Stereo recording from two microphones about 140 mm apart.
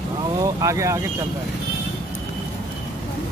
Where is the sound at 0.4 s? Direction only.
20° right (ahead or behind).